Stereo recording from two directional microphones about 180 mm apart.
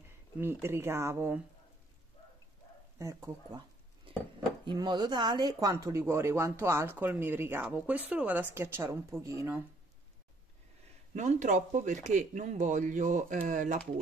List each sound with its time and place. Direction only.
0.4 s speech: 15° right (ahead or behind)
3.0 s speech: 15° right (ahead or behind)
4.6 s speech: 25° right (ahead or behind)
11.1 s speech: 40° right (ahead or behind)